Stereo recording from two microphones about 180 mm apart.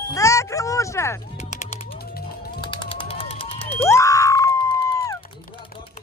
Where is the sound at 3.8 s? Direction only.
15° left (ahead or behind).